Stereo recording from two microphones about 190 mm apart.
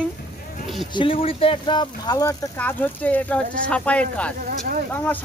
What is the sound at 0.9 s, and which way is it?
Speech, 25° left (ahead or behind).